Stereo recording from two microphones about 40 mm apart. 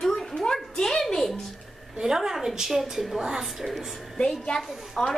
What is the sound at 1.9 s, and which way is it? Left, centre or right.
A woman's voice, centre.